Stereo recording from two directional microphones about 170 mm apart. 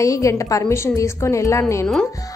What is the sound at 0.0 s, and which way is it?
A woman's voice, 20° left (ahead or behind).